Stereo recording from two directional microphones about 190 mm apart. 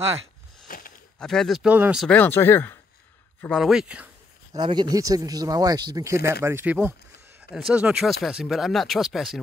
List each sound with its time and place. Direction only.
0.7 s a sound: 50° left (ahead or behind)
1.2 s speech: centre (ahead or behind)
2.0 s speech: 10° left (ahead or behind); by 4.1 s 5° right (ahead or behind)
4.6 s speech: 25° right (ahead or behind); by 9.4 s centre (ahead or behind)